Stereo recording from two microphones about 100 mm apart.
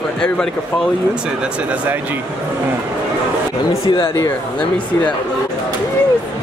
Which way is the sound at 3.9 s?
50° left (ahead or behind).